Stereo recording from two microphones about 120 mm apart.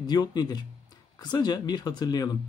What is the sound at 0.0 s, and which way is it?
Speech, 35° left (ahead or behind).